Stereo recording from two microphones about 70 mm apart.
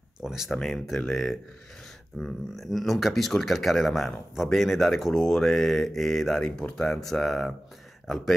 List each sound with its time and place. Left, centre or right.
0.2 s speech: centre
0.6 s speech: centre